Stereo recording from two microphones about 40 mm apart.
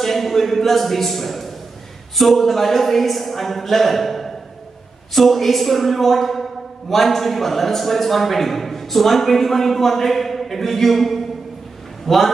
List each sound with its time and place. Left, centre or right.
0.0 s a man's voice: centre